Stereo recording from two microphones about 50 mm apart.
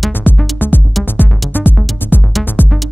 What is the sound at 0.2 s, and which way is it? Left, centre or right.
Music, left.